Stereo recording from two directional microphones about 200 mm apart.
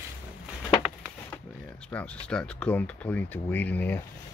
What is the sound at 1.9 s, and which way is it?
Speech, 5° left (ahead or behind).